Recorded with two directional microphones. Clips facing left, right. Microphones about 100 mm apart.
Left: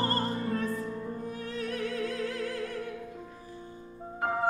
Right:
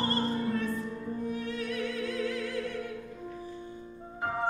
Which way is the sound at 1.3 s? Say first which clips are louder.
Right 2 dB; 40° left (ahead or behind).